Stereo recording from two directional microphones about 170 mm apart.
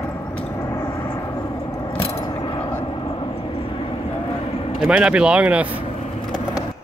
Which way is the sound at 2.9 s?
30° left (ahead or behind).